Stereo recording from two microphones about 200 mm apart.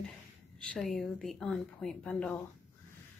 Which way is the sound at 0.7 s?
Centre (ahead or behind).